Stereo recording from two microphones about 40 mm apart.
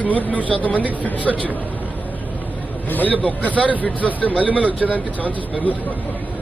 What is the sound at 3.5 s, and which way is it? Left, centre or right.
Speech, right.